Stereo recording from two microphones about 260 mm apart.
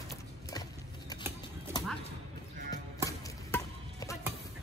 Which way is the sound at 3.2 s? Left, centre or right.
Centre.